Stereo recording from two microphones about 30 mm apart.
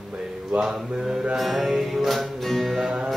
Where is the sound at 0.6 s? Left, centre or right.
Centre.